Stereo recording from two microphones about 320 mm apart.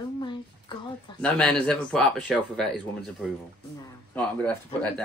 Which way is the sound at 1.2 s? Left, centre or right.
Centre.